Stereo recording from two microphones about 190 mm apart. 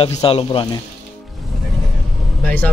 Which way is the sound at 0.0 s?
30° left (ahead or behind).